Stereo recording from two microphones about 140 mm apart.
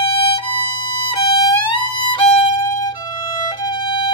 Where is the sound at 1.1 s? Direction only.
35° left (ahead or behind).